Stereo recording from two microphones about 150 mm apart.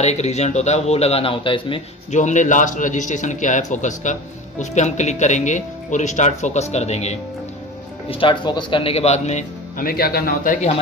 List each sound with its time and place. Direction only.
0.0 s a man's voice: 50° left (ahead or behind)
2.0 s a man's voice: 55° left (ahead or behind)
8.1 s a man's voice: 35° left (ahead or behind); by 10.6 s 70° left (ahead or behind)